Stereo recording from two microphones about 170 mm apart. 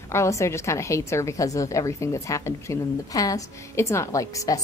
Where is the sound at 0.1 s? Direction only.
15° left (ahead or behind).